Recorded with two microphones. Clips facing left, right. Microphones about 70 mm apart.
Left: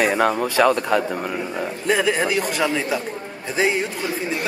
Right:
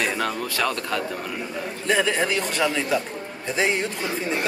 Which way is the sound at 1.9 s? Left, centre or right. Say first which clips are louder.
Left 2 dB; centre.